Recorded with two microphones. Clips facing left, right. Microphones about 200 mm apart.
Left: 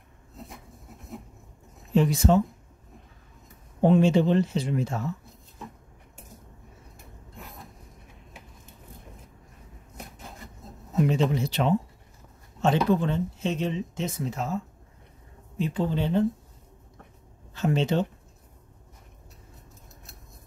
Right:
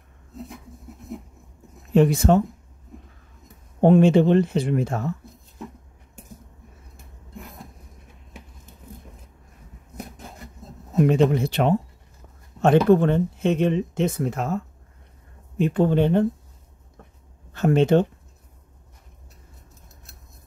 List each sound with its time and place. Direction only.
2.0 s speech: 55° right (ahead or behind)
3.8 s speech: 55° right (ahead or behind)
11.0 s speech: 55° right (ahead or behind)
17.6 s speech: 55° right (ahead or behind)